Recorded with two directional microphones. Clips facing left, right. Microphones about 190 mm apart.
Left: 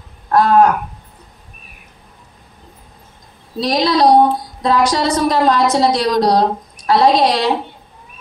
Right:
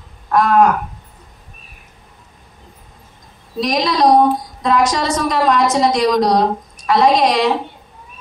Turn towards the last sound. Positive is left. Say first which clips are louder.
# left 1 dB
turn(degrees=35)  # may be behind; listen again after turning